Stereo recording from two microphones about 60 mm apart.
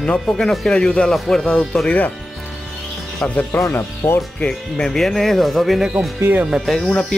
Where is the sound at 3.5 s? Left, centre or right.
Left.